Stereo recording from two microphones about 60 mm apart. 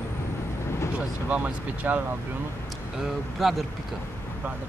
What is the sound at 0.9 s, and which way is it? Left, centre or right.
Speech, right.